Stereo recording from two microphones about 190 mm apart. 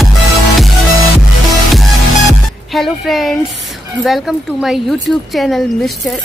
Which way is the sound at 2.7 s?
Centre (ahead or behind).